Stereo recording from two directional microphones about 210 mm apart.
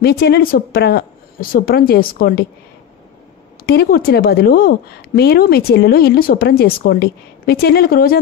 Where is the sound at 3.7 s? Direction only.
45° left (ahead or behind).